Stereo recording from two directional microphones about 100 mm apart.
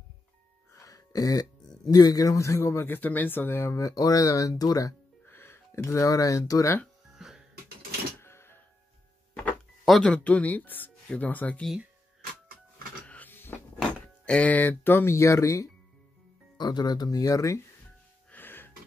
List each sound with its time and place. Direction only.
0.7 s a sound: 35° left (ahead or behind)
1.9 s a man's voice: 40° left (ahead or behind)
5.2 s speech: 25° left (ahead or behind)
7.2 s music: 5° right (ahead or behind)
8.2 s music: 25° left (ahead or behind)
9.8 s speech: 5° left (ahead or behind)
13.0 s printer: 15° left (ahead or behind)
13.7 s speech: 10° left (ahead or behind); by 15.7 s 30° left (ahead or behind)
16.5 s a man's voice: 45° left (ahead or behind)
18.3 s gasp: 20° left (ahead or behind)